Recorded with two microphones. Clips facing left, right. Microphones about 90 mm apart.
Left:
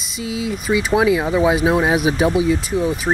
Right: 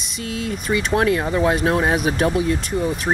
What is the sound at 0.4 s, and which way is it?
Speech, 5° left (ahead or behind).